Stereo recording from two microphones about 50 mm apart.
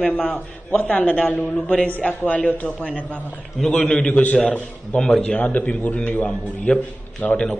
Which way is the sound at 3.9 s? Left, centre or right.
Left.